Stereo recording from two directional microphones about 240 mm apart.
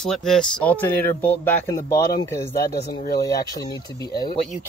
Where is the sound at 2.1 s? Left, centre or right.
Left.